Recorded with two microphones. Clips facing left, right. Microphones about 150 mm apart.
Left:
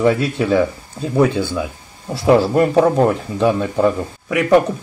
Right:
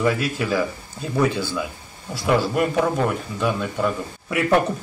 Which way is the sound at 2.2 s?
35° left (ahead or behind).